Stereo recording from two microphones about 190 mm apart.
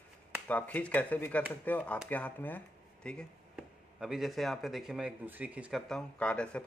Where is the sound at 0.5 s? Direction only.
10° left (ahead or behind).